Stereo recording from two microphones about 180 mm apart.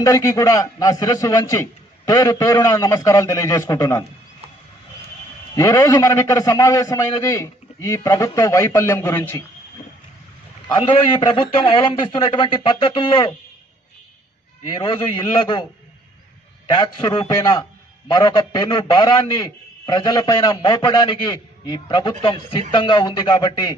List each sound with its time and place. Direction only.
0.0 s a man's voice: 15° left (ahead or behind)
5.6 s a man's voice: 20° left (ahead or behind)
10.7 s a man's voice: 25° left (ahead or behind)
14.7 s a man's voice: 25° left (ahead or behind)
16.6 s a man's voice: 25° left (ahead or behind)